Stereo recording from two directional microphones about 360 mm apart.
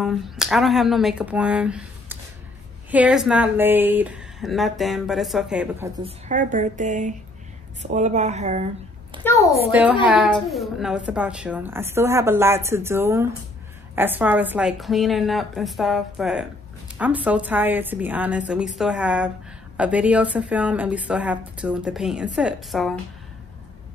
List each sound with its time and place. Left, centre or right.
0.0 s a woman's voice: centre
6.0 s a woman's voice: centre
9.2 s a woman's voice: centre
9.7 s a woman's voice: centre